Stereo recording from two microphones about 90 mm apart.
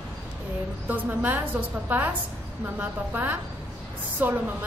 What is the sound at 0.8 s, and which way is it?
A woman's voice, 20° right (ahead or behind).